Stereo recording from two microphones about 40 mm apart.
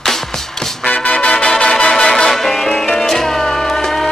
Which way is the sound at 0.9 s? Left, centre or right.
Left.